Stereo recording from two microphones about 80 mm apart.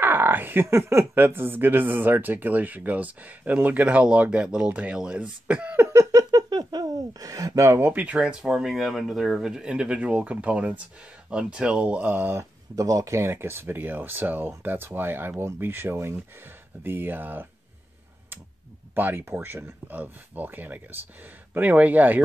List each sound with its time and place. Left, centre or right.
0.0 s speech: right
5.9 s a sound: right
7.7 s speech: right
12.4 s speech: right
18.9 s speech: right